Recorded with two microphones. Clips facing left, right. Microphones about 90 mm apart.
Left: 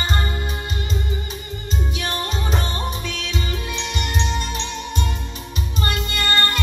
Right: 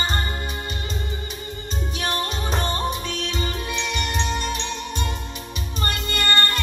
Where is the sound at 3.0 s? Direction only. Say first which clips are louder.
Right 1 dB; 40° right (ahead or behind).